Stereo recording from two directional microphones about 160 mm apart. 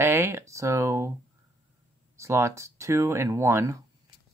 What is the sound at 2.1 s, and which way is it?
Speech, 15° right (ahead or behind).